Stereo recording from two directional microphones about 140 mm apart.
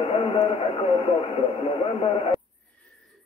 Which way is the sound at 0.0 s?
40° left (ahead or behind).